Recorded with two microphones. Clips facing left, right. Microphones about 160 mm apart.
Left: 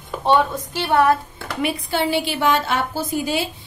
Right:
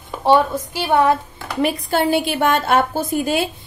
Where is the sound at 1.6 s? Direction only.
45° right (ahead or behind).